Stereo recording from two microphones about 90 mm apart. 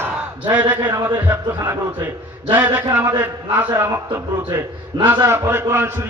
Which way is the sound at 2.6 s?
25° right (ahead or behind).